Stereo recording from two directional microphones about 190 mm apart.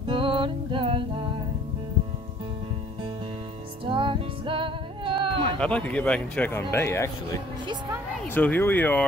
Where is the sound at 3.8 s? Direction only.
25° right (ahead or behind).